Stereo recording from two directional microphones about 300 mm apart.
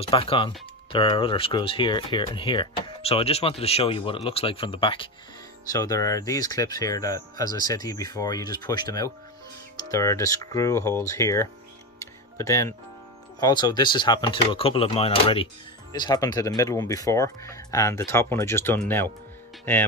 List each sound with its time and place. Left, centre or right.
0.0 s speech: centre
12.0 s tick-tock: centre
13.4 s speech: centre